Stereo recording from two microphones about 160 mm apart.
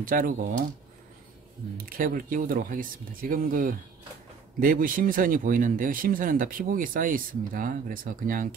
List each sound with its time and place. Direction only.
0.0 s speech: 60° right (ahead or behind)
1.9 s speech: 60° right (ahead or behind)